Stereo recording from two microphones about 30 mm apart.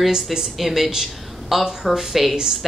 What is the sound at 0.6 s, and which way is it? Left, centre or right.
Speech, centre.